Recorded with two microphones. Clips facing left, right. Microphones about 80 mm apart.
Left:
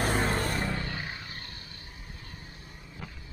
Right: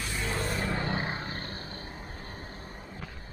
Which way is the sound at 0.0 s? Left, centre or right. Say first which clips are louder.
Left 5 dB; left.